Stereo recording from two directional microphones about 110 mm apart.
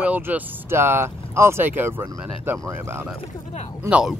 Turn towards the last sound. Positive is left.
turn(degrees=-10)  # may be behind; listen again after turning